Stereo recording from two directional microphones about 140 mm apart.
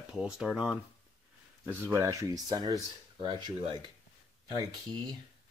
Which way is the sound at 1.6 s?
15° right (ahead or behind).